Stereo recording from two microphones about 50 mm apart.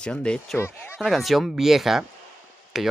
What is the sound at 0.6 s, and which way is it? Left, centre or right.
Speech, left.